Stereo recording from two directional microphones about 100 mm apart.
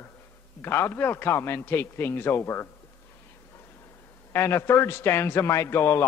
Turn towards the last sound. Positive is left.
turn(degrees=25)  # may be behind; listen again after turning